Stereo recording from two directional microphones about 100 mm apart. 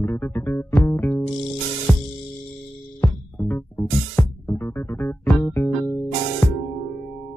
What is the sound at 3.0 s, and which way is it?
Music, 25° left (ahead or behind).